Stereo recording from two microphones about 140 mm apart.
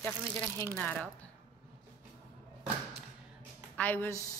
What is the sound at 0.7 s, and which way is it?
Speech, 10° left (ahead or behind).